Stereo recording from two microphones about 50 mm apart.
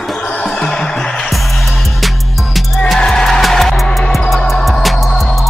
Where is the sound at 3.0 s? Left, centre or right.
Centre.